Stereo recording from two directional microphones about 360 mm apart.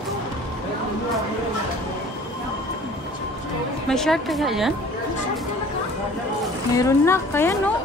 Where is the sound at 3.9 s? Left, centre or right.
Centre.